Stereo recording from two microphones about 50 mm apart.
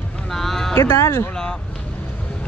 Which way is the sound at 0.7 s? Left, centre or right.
Left.